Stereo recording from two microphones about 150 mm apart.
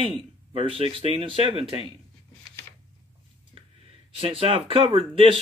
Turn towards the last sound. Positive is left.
turn(degrees=-35)  # may be behind; listen again after turning